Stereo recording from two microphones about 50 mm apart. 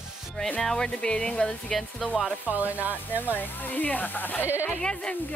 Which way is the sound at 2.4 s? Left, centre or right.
Right.